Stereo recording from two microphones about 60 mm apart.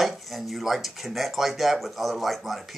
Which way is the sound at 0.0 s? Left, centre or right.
Centre.